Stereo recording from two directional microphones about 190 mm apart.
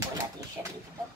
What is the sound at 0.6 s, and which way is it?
Speech, 10° right (ahead or behind).